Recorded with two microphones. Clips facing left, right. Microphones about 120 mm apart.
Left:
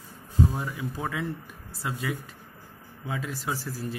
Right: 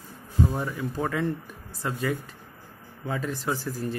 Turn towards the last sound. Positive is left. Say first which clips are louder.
# right 3 dB
turn(degrees=0)  # may be behind; listen again after turning